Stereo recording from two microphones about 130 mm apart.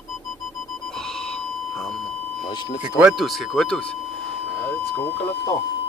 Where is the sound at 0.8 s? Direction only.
5° left (ahead or behind).